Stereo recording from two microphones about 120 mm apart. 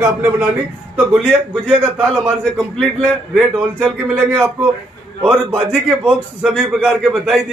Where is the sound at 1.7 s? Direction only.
5° right (ahead or behind).